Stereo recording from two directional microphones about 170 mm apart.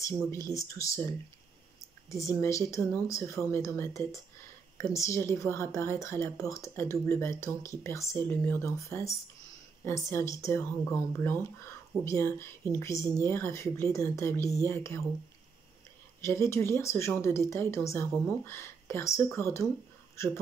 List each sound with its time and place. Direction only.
0.3 s a woman's voice: 15° left (ahead or behind)
2.4 s a woman's voice: 15° left (ahead or behind)
16.2 s a woman's voice: 15° left (ahead or behind)